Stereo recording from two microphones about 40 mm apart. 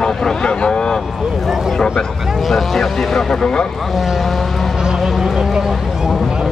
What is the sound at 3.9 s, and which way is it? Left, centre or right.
Speech, centre.